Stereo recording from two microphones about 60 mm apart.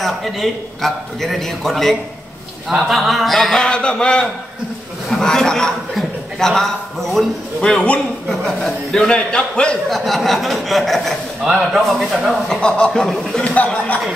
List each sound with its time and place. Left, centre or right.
0.0 s a man's voice: centre
3.6 s a man's voice: centre
7.6 s a man's voice: centre
8.3 s a man's voice: centre
9.3 s a man's voice: centre
9.8 s a man's voice: centre
12.6 s a man's voice: centre
12.9 s a man's voice: centre